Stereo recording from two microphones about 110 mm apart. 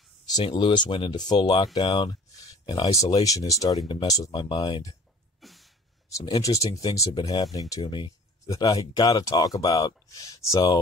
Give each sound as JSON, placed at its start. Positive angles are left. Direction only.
{"t": 0.4, "sound": "speech", "side_deg": 50}
{"t": 5.4, "sound": "a sound", "side_deg": 0}
{"t": 6.1, "sound": "speech", "side_deg": 35}
{"t": 7.7, "sound": "speech", "side_deg": 45}